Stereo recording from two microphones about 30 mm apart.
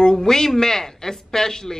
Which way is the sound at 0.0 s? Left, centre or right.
Centre.